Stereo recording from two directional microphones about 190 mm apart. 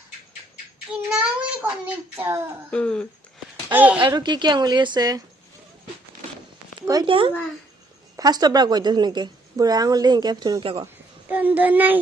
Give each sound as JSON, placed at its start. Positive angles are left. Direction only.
{"t": 0.9, "sound": "child singing", "side_deg": -5}
{"t": 1.4, "sound": "speech", "side_deg": -10}
{"t": 2.7, "sound": "a sound", "side_deg": 5}
{"t": 3.6, "sound": "speech", "side_deg": -10}
{"t": 4.2, "sound": "a woman's voice", "side_deg": -25}
{"t": 6.9, "sound": "a woman's voice", "side_deg": -25}
{"t": 11.2, "sound": "speech", "side_deg": -10}